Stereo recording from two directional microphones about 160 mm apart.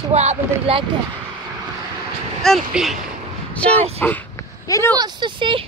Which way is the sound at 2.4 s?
Centre (ahead or behind).